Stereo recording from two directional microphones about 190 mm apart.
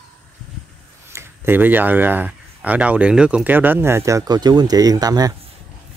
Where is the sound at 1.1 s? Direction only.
15° right (ahead or behind).